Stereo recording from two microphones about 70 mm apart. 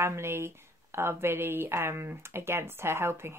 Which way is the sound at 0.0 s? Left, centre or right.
Right.